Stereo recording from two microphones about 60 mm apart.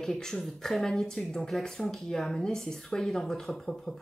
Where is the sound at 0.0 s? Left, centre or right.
Centre.